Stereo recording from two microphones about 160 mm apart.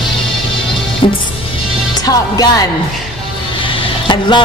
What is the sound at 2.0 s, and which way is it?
Music, 25° left (ahead or behind).